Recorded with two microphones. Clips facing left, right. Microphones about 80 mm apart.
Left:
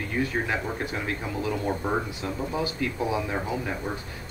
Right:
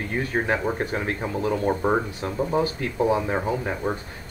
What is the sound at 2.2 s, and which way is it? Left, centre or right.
Speech, right.